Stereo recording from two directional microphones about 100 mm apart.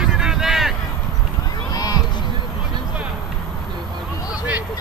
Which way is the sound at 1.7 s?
40° left (ahead or behind).